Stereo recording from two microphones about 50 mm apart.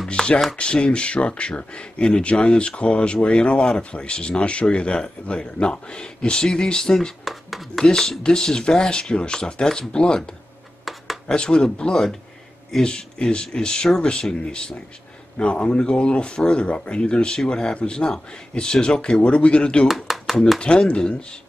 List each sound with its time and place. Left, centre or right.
0.1 s chopping: centre
0.6 s speech: left
7.2 s speech: centre
7.8 s speech: centre
10.9 s a sound: centre
11.2 s speech: centre
20.1 s a sound: centre
20.6 s speech: centre